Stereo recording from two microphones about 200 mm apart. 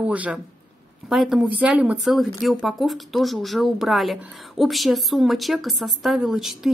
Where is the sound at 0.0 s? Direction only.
5° right (ahead or behind).